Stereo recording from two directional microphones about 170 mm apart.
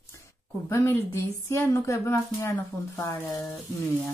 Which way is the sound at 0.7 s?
15° left (ahead or behind).